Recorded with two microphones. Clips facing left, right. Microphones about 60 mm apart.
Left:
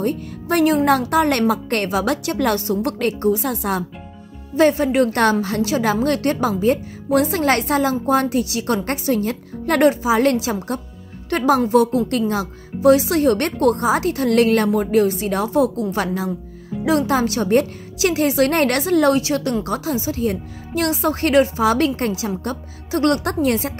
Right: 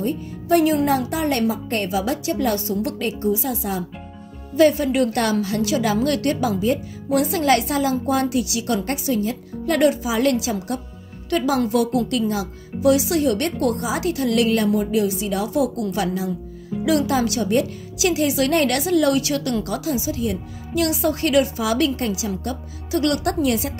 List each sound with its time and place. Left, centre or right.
0.0 s a woman's voice: left
4.6 s speech: left
9.8 s speech: left